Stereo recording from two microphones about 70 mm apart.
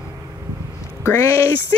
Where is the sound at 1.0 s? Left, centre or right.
Left.